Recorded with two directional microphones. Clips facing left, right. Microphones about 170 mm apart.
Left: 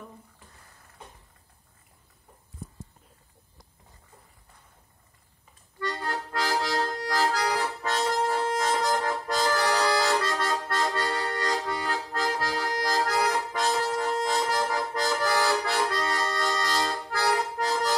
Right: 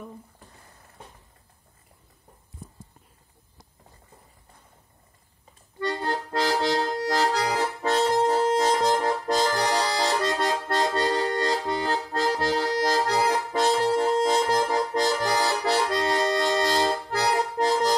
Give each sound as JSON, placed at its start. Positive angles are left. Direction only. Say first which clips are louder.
{"t": 5.8, "sound": "accordion", "louder": "right 4 dB", "side_deg": -30}
{"t": 17.1, "sound": "music", "louder": "right 2 dB", "side_deg": -30}